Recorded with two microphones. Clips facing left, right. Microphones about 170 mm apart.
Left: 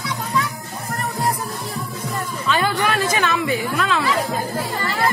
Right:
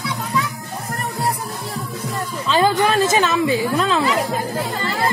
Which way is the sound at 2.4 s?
30° right (ahead or behind).